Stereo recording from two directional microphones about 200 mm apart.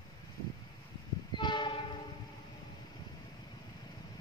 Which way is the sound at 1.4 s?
25° left (ahead or behind).